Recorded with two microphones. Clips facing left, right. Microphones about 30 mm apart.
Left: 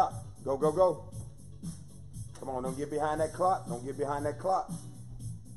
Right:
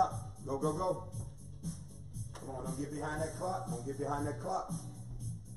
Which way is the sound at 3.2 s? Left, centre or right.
Left.